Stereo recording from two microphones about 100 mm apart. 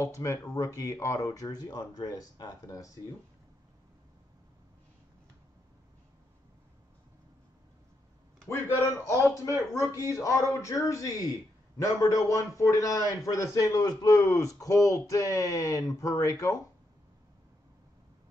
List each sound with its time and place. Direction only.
0.0 s speech: 30° left (ahead or behind)
8.5 s speech: 25° left (ahead or behind)